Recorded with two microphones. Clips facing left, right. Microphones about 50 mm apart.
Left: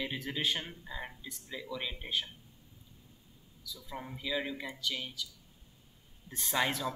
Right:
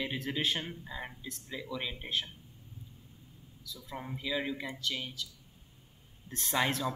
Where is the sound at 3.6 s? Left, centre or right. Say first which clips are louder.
Right 1 dB; centre.